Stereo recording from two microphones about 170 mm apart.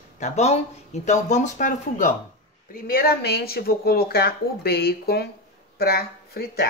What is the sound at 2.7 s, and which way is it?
Speech, 60° left (ahead or behind).